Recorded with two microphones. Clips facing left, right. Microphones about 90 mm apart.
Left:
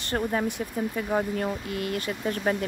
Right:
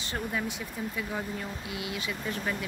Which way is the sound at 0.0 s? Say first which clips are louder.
Left 6 dB; 50° left (ahead or behind).